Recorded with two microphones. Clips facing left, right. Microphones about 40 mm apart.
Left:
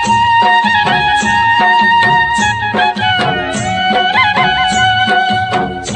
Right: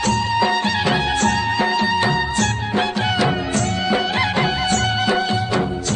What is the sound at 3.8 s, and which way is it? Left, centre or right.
Music of bollywood, left.